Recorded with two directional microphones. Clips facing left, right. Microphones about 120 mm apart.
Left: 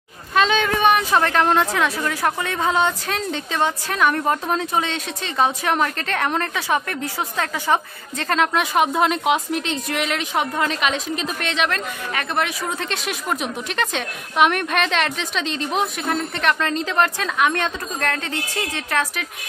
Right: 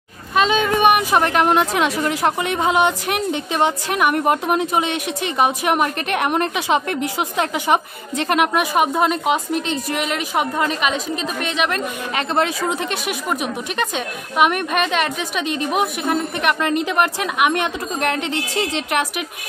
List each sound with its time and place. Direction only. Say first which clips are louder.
0.3 s a sound: right 1 dB; 5° right (ahead or behind)
0.7 s a woman's voice: right 2 dB; 15° right (ahead or behind)
8.7 s a woman's voice: even; 5° right (ahead or behind)
12.1 s speech: right 4 dB; 25° right (ahead or behind)
12.7 s a woman's voice: right 3 dB; 10° right (ahead or behind)